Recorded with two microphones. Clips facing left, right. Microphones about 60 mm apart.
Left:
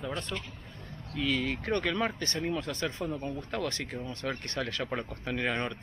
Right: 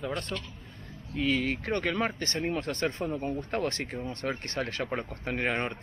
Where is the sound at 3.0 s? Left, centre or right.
Right.